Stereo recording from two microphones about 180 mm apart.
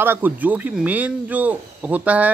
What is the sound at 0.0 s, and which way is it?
Speech, 10° right (ahead or behind).